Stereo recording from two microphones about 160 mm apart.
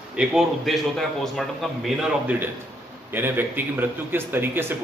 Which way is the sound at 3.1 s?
15° right (ahead or behind).